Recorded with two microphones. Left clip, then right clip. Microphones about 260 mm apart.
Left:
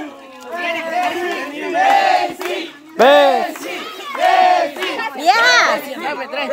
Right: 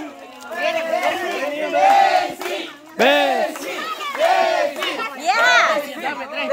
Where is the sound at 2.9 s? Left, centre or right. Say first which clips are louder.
Left 6 dB; centre.